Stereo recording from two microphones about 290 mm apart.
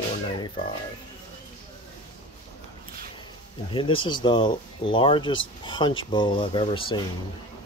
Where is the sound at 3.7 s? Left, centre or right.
Centre.